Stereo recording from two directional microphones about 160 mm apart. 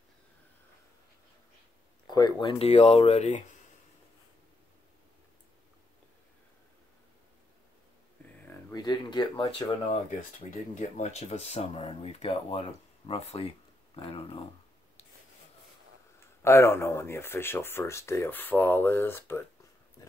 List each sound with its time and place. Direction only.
2.0 s speech: 25° left (ahead or behind)
2.6 s speech: 40° left (ahead or behind)
8.7 s speech: 25° left (ahead or behind)
10.5 s speech: 50° left (ahead or behind)
16.4 s speech: 15° left (ahead or behind)